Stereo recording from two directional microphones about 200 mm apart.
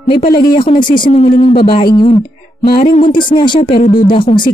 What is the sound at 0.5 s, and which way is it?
Speech, 25° left (ahead or behind).